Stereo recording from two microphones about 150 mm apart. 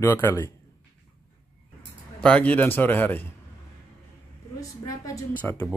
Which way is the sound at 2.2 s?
10° left (ahead or behind).